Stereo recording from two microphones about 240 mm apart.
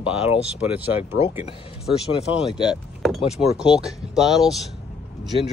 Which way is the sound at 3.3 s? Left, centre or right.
Centre.